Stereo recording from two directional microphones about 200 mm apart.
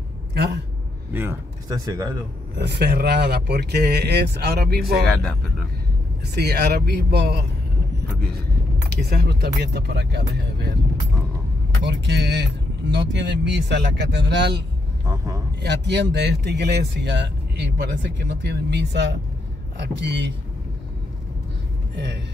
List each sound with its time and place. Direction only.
0.3 s a man's voice: 55° right (ahead or behind)
1.1 s speech: 10° right (ahead or behind)
2.6 s speech: 55° right (ahead or behind)
6.3 s speech: 55° right (ahead or behind)
8.8 s speech: 55° right (ahead or behind)
11.8 s speech: 60° right (ahead or behind)
15.0 s speech: 15° right (ahead or behind)
15.6 s speech: 60° right (ahead or behind)
21.9 s speech: 60° right (ahead or behind)